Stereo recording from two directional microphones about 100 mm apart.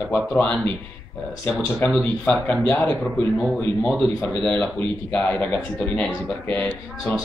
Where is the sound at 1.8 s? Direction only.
20° left (ahead or behind).